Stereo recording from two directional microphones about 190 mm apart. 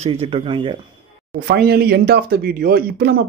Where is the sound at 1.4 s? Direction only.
60° right (ahead or behind).